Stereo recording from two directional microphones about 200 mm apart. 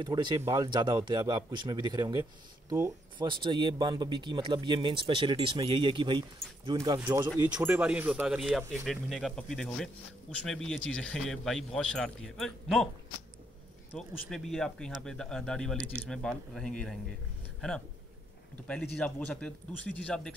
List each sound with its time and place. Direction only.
0.0 s speech: 20° right (ahead or behind)
7.6 s speech: 10° right (ahead or behind)
13.9 s speech: centre (ahead or behind)